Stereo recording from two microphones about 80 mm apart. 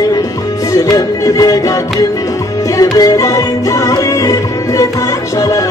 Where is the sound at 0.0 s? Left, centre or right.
Left.